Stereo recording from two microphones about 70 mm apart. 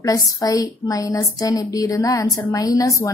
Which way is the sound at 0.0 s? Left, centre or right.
Left.